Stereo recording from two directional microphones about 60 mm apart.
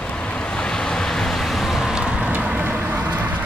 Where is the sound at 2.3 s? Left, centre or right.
Right.